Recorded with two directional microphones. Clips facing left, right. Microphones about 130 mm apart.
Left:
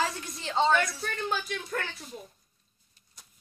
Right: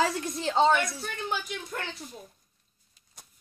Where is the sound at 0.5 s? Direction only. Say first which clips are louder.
Right 1 dB; 10° right (ahead or behind).